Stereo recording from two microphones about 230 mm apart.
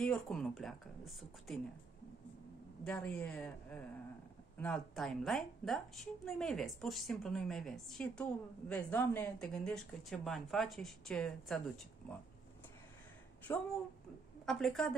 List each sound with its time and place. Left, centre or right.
0.0 s a woman's voice: centre
2.8 s a woman's voice: centre
13.5 s a woman's voice: centre